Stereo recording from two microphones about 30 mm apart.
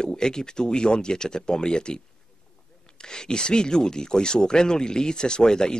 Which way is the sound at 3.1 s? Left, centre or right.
Left.